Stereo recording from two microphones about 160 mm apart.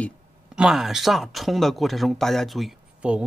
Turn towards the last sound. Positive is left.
turn(degrees=-5)  # may be behind; listen again after turning